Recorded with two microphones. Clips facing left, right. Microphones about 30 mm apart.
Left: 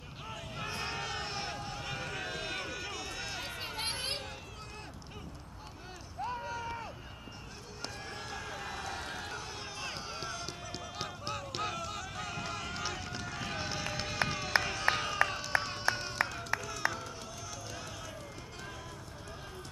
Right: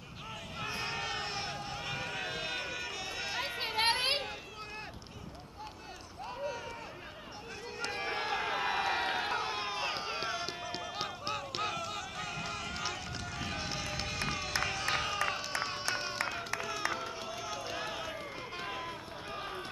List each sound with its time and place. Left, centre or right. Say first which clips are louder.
0.6 s run: right 1 dB; centre; by 4.3 s right
6.2 s a sound: left 1 dB; centre
7.9 s run: right 10 dB; right; by 15.8 s centre
15.9 s music: left 5 dB; centre
16.5 s run: left 3 dB; right